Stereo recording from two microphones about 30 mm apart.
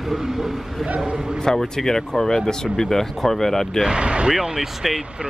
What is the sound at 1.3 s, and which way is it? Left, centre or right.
Speech, centre.